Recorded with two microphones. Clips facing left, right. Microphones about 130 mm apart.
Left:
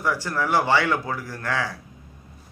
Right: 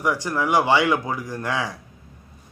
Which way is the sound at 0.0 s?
15° right (ahead or behind).